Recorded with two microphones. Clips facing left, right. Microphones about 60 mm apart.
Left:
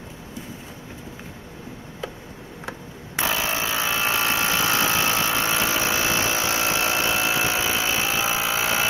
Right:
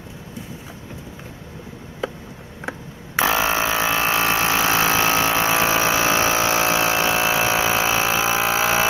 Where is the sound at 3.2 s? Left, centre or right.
Right.